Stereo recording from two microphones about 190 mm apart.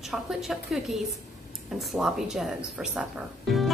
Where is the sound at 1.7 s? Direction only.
Centre (ahead or behind).